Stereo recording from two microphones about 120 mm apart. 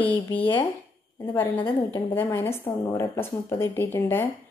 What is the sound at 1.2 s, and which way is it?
A woman's voice, 15° left (ahead or behind).